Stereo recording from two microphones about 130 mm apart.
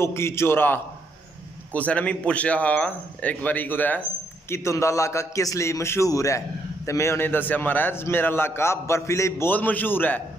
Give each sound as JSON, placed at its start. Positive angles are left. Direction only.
{"t": 0.0, "sound": "a man's voice", "side_deg": 20}